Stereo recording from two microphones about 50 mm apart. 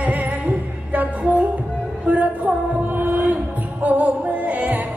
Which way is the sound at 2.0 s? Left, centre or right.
Right.